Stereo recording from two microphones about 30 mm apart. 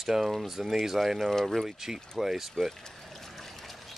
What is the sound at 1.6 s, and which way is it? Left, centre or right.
Speech, centre.